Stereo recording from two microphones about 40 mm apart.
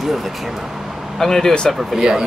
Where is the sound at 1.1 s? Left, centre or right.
Centre.